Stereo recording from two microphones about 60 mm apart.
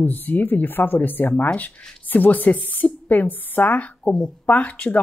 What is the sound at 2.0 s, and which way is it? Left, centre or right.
A woman's voice, left.